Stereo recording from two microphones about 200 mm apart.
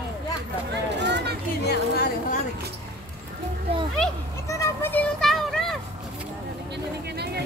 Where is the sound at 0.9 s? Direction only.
60° right (ahead or behind).